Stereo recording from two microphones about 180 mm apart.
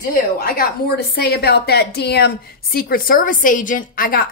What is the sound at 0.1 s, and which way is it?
A woman's voice, 55° left (ahead or behind).